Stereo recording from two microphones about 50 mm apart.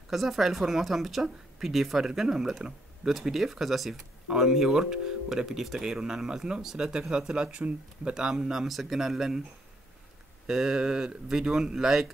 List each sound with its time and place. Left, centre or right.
0.1 s a woman's voice: centre
10.4 s speech: centre